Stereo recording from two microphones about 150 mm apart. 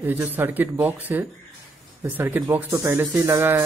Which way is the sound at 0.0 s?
15° right (ahead or behind).